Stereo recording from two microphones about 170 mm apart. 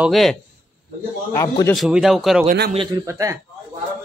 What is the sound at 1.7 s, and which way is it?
Speech, centre (ahead or behind).